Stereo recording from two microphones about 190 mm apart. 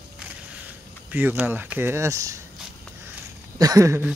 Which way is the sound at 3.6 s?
20° right (ahead or behind).